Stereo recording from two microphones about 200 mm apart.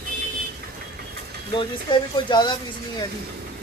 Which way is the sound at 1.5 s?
25° left (ahead or behind).